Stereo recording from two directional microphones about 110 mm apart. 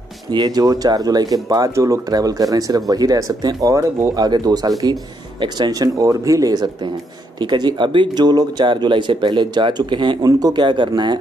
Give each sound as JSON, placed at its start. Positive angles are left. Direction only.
{"t": 0.3, "sound": "speech", "side_deg": -40}